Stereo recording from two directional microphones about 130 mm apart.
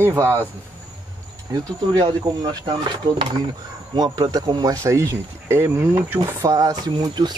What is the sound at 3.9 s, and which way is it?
Speech, 30° right (ahead or behind).